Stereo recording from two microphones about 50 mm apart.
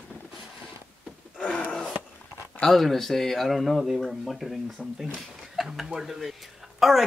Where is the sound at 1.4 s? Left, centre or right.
Left.